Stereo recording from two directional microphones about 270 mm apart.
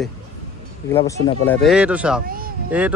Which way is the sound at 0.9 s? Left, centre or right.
Centre.